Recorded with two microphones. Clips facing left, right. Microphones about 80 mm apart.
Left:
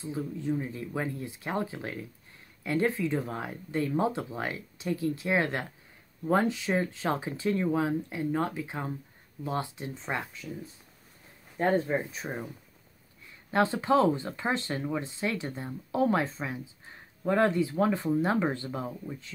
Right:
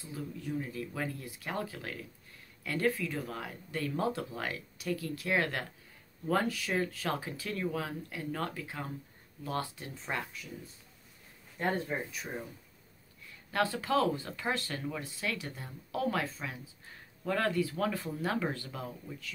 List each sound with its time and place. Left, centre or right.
0.0 s speech: left
11.5 s speech: left
13.5 s speech: left